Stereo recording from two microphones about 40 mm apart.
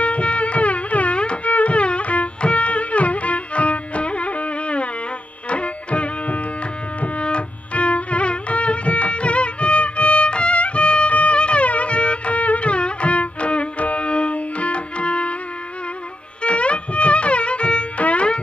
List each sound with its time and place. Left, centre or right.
0.0 s music: left
16.4 s music: left